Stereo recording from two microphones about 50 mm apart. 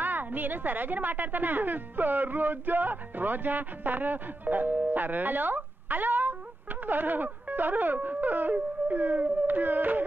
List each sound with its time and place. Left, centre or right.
0.0 s a woman's voice: right
6.9 s music: right